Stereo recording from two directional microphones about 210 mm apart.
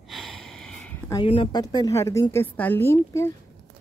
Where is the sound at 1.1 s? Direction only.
25° left (ahead or behind).